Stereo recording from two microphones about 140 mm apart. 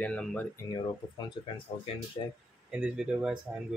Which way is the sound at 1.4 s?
40° left (ahead or behind).